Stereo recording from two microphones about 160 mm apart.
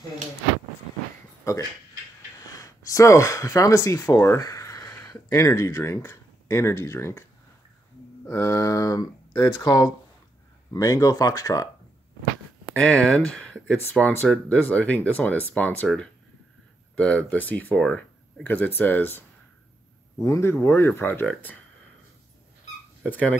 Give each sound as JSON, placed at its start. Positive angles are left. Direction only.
{"t": 2.4, "sound": "speech", "side_deg": 20}
{"t": 8.3, "sound": "speech", "side_deg": 20}
{"t": 12.7, "sound": "speech", "side_deg": 10}
{"t": 16.9, "sound": "speech", "side_deg": 5}
{"t": 20.2, "sound": "speech", "side_deg": 15}
{"t": 23.0, "sound": "speech", "side_deg": 10}